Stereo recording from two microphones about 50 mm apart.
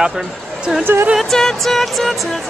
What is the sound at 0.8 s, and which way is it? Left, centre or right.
Speech, right.